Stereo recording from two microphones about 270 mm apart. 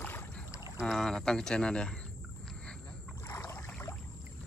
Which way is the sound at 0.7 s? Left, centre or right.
Centre.